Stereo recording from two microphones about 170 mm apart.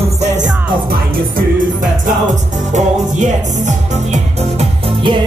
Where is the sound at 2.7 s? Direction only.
45° right (ahead or behind).